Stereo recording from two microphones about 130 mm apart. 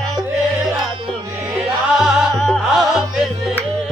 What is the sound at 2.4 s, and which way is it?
Music, centre (ahead or behind).